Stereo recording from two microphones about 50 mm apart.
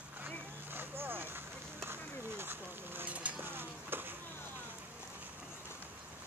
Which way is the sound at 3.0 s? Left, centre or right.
Right.